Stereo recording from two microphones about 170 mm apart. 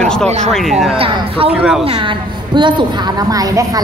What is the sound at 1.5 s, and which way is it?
Speech, 5° right (ahead or behind).